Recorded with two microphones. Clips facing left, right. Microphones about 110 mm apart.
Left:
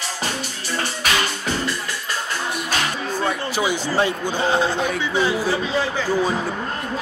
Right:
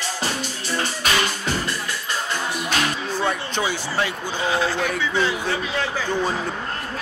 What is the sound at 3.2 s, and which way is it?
A man's voice, 10° left (ahead or behind).